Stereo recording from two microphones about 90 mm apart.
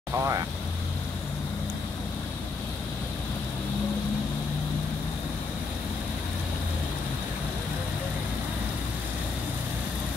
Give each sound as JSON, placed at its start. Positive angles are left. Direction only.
{"t": 0.2, "sound": "speech", "side_deg": -35}